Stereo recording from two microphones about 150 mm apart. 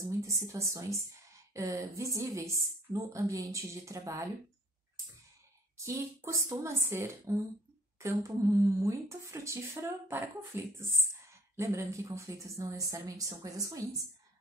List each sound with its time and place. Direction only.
0.2 s a woman's voice: 20° right (ahead or behind)
5.8 s a woman's voice: 20° right (ahead or behind)